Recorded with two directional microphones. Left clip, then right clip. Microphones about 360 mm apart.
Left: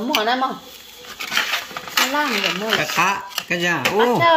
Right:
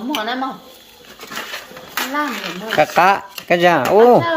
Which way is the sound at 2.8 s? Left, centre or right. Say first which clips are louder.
Right 6 dB; centre.